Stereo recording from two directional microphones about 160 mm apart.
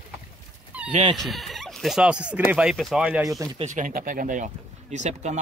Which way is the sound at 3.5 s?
50° right (ahead or behind).